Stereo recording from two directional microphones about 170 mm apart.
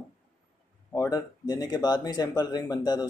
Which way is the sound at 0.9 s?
20° left (ahead or behind).